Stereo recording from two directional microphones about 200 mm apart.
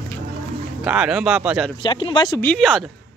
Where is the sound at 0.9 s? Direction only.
5° right (ahead or behind).